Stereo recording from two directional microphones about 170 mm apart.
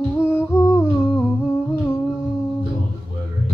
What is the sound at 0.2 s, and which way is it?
Humming, 15° left (ahead or behind).